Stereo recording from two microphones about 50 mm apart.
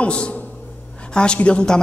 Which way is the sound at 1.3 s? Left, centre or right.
Left.